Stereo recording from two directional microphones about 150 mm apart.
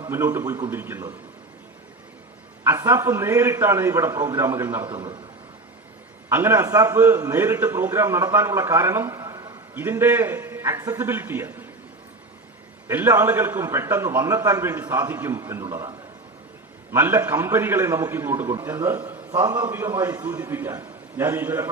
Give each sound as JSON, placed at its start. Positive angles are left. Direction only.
{"t": 0.0, "sound": "a man's voice", "side_deg": -20}
{"t": 2.6, "sound": "a man's voice", "side_deg": -15}
{"t": 6.2, "sound": "a man's voice", "side_deg": -15}
{"t": 9.8, "sound": "a man's voice", "side_deg": -15}
{"t": 12.8, "sound": "a man's voice", "side_deg": -15}
{"t": 16.9, "sound": "a man's voice", "side_deg": -15}